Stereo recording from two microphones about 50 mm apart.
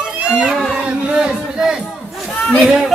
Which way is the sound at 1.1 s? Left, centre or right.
Centre.